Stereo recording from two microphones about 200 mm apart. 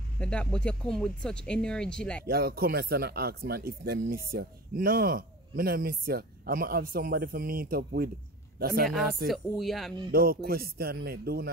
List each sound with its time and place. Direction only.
0.2 s speech: 5° left (ahead or behind)
2.2 s a man's voice: 50° right (ahead or behind)
9.3 s speech: centre (ahead or behind)
10.1 s speech: 50° right (ahead or behind)